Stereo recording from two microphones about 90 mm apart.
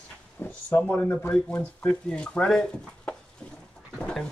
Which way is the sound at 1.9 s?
10° left (ahead or behind).